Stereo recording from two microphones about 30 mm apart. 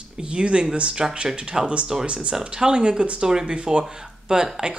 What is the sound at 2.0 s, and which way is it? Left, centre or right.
Speech, right.